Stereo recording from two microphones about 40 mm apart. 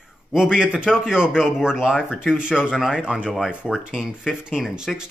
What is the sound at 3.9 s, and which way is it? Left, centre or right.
Speech, centre.